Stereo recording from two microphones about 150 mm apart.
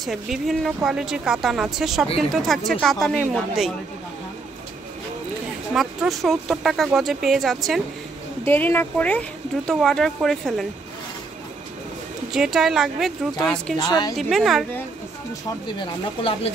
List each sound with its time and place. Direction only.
0.0 s speech: centre (ahead or behind)
5.7 s speech: 5° right (ahead or behind)
8.5 s speech: 15° left (ahead or behind)
12.3 s speech: 5° right (ahead or behind)
13.7 s a woman's voice: 25° left (ahead or behind)
14.1 s speech: centre (ahead or behind)
16.2 s speech: 40° left (ahead or behind)